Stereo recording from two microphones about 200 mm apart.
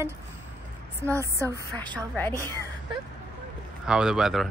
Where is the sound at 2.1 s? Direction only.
10° left (ahead or behind).